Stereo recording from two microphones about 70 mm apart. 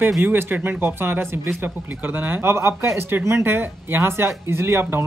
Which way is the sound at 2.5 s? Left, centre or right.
Right.